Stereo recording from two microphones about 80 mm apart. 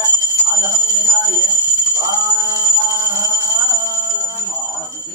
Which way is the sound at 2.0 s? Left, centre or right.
Right.